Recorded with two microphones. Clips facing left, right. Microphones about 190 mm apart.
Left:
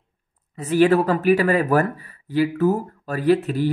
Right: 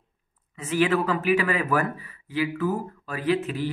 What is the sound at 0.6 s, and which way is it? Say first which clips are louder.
Speech: left 6 dB; 40° left (ahead or behind).